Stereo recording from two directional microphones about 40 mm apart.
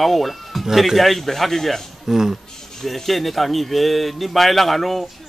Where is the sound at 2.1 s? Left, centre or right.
Centre.